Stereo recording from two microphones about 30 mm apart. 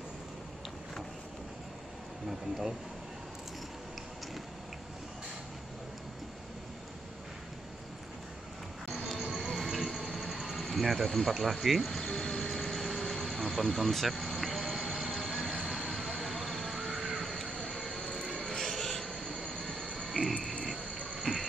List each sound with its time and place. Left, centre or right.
9.3 s a sound: centre
10.1 s vehicle: centre
10.6 s speech: centre
11.8 s speech: centre
12.2 s vehicle: left
16.8 s crow: centre
17.6 s vehicle: centre
19.3 s vehicle: left
20.1 s a sound: centre
21.3 s a sound: left